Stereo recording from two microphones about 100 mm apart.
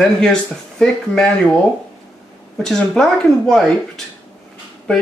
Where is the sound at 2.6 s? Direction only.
5° left (ahead or behind).